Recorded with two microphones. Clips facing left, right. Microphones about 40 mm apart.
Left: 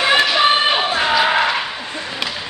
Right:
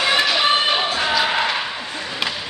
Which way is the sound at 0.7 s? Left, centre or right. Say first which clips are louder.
Left 3 dB; left.